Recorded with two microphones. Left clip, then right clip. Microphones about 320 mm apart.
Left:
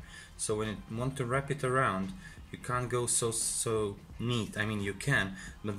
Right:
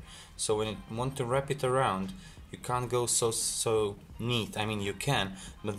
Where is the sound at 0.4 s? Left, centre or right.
Centre.